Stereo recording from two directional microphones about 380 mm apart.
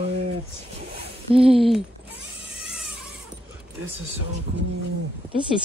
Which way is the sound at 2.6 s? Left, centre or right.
Centre.